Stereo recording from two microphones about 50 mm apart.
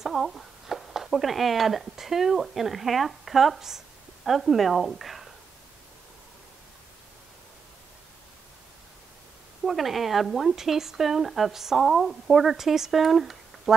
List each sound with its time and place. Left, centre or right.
0.0 s speech: centre
9.7 s speech: centre